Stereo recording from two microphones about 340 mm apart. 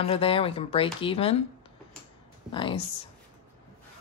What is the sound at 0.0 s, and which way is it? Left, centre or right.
Speech, centre.